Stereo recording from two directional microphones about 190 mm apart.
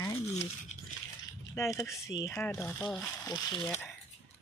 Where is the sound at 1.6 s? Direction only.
15° left (ahead or behind).